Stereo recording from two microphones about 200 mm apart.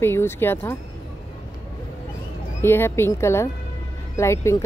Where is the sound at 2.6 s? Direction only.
10° left (ahead or behind).